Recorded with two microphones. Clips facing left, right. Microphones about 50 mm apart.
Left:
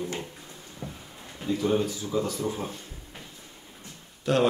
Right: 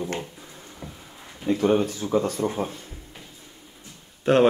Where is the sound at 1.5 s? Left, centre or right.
Right.